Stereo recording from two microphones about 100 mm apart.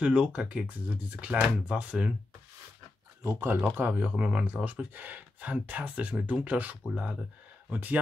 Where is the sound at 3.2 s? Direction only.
25° right (ahead or behind).